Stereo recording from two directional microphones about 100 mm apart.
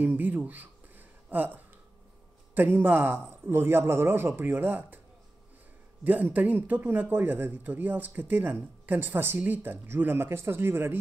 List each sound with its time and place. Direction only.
0.0 s a sound: 15° right (ahead or behind)
2.5 s speech: 20° right (ahead or behind)
6.0 s speech: 15° right (ahead or behind)